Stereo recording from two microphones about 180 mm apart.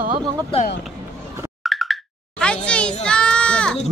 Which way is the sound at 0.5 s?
30° left (ahead or behind).